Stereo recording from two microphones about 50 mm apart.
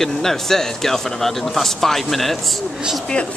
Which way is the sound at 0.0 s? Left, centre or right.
Centre.